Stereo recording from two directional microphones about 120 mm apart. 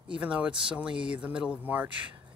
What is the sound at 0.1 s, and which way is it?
Speech, 10° right (ahead or behind).